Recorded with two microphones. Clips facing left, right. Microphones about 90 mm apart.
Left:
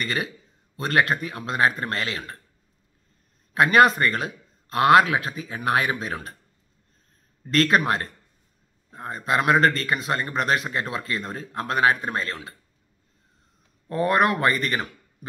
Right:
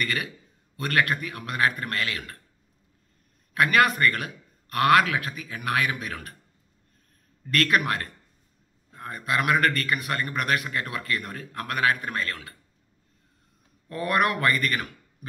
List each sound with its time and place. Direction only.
0.0 s a man's voice: 25° left (ahead or behind)
3.5 s a man's voice: 25° left (ahead or behind)
7.4 s a man's voice: 25° left (ahead or behind)
13.8 s a man's voice: 25° left (ahead or behind)